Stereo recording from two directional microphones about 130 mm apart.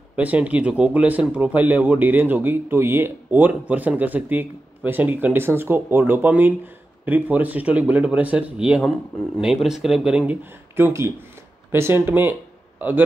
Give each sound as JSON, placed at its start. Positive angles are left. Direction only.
{"t": 0.1, "sound": "speech", "side_deg": -10}
{"t": 10.8, "sound": "speech", "side_deg": -20}